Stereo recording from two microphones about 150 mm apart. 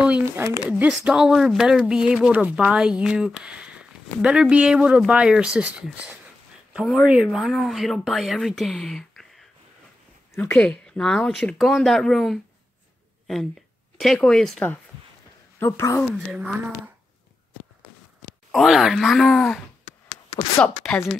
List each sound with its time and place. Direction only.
0.2 s speech: 20° right (ahead or behind)
0.7 s speech: 5° right (ahead or behind)
10.3 s speech: 15° left (ahead or behind)
13.9 s speech: centre (ahead or behind)
15.6 s speech: 15° left (ahead or behind)
16.3 s speech: 5° right (ahead or behind)
18.5 s speech: centre (ahead or behind)
19.8 s a sound: 40° left (ahead or behind)
20.8 s speech: centre (ahead or behind)